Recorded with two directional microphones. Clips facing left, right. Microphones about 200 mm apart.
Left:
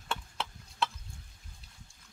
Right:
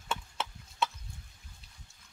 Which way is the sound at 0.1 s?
Centre (ahead or behind).